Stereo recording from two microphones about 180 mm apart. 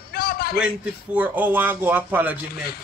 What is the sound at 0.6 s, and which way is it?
Speech, 10° right (ahead or behind).